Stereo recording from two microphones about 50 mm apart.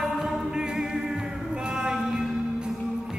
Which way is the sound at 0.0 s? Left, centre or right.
Centre.